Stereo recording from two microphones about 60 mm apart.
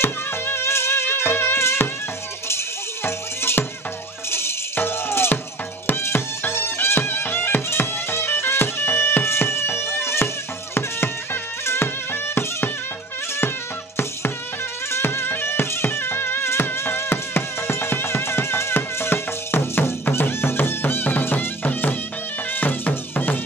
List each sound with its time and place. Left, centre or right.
0.0 s music: left
14.9 s music: left